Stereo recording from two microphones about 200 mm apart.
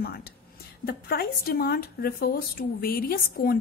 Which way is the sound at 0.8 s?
50° left (ahead or behind).